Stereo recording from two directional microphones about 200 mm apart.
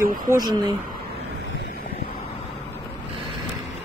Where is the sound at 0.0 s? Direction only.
45° right (ahead or behind).